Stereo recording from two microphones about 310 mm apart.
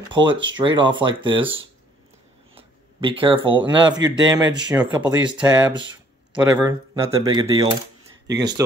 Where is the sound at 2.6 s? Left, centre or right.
Centre.